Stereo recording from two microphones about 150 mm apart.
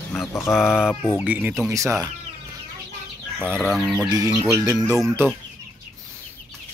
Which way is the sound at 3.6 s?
Centre (ahead or behind).